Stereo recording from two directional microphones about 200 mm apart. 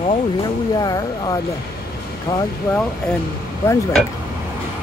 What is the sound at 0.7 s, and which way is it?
Speech, 20° left (ahead or behind).